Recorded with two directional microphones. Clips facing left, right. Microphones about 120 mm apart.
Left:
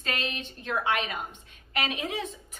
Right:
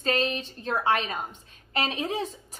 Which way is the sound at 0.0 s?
35° right (ahead or behind).